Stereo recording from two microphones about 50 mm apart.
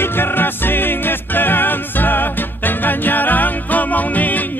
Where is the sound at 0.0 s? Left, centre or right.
Left.